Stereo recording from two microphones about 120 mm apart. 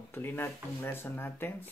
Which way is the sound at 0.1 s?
15° left (ahead or behind).